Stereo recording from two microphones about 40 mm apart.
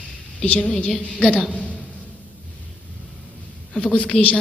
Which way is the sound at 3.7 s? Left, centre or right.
Left.